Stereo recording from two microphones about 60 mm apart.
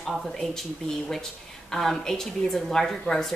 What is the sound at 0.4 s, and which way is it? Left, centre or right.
A woman's voice, centre.